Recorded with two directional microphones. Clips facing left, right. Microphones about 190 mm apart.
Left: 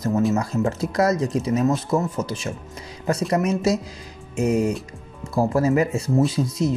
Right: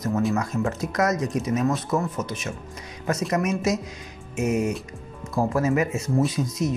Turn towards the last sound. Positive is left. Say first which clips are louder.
# left 3 dB
turn(degrees=30)  # may be behind; listen again after turning